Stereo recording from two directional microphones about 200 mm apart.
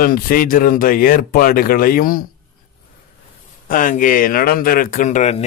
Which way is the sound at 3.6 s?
45° left (ahead or behind).